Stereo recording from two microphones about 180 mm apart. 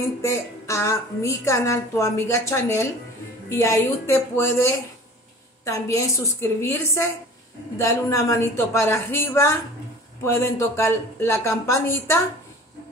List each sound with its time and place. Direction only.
0.2 s a woman's voice: 15° left (ahead or behind)